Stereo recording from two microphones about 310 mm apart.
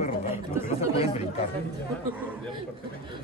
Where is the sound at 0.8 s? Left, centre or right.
Centre.